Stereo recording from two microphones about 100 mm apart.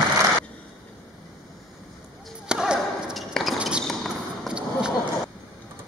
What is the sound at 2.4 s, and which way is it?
Basketball bounce, 10° right (ahead or behind).